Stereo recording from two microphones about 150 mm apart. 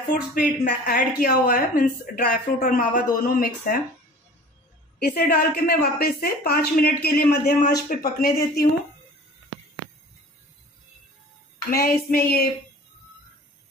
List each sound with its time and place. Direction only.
0.1 s speech: 65° left (ahead or behind)
4.9 s a woman's voice: 90° left
11.7 s child singing: 80° left